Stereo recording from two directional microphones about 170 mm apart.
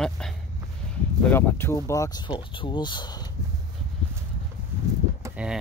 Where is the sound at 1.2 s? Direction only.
10° left (ahead or behind).